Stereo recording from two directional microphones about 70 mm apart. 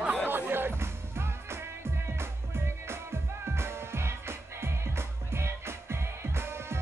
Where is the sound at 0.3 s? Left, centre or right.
Right.